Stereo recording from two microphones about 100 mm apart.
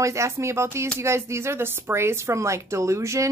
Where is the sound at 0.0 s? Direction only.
30° right (ahead or behind).